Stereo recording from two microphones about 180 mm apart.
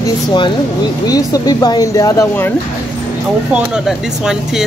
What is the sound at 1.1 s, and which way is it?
Speech, 20° left (ahead or behind).